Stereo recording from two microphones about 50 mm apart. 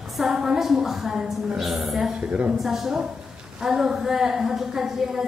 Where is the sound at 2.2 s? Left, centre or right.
Right.